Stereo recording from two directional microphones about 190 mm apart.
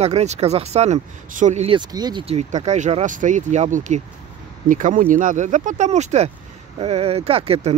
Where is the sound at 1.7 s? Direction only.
20° right (ahead or behind).